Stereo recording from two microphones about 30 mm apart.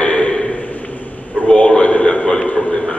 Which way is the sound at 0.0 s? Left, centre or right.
Left.